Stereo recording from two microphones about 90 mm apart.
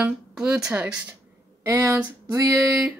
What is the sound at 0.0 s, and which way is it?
Speech, 10° right (ahead or behind).